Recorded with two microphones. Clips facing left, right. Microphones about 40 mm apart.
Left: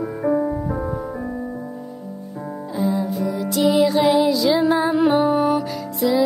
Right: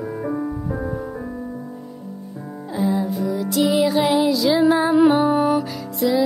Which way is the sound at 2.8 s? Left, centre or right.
Centre.